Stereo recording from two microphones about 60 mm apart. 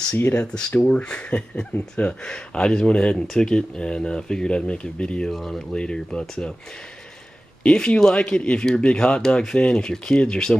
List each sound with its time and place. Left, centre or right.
0.4 s speech: centre
5.3 s speech: centre
5.7 s speech: centre
7.6 s speech: centre